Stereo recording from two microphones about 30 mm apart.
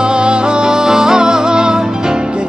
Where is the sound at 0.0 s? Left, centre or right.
Right.